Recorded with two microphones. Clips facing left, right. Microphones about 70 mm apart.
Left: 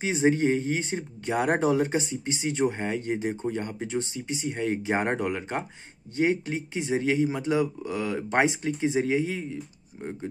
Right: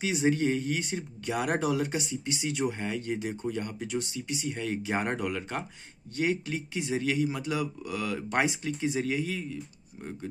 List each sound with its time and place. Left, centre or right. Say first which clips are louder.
0.0 s speech: left 3 dB; left